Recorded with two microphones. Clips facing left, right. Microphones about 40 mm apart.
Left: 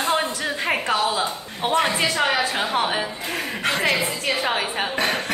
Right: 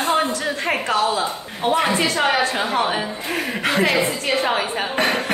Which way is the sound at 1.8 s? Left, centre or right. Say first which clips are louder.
Right 2 dB; centre.